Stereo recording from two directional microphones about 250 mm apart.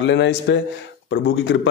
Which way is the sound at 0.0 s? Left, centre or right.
Left.